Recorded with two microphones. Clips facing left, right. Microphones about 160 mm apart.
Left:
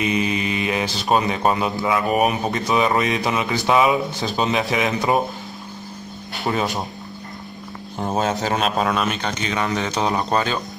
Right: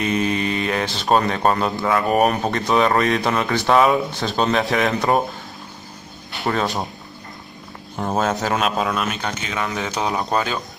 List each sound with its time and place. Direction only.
0.0 s mantra: 5° left (ahead or behind)
1.0 s speech: centre (ahead or behind)
6.5 s speech: 10° left (ahead or behind)
8.2 s speech: 20° left (ahead or behind)
8.7 s speech: centre (ahead or behind)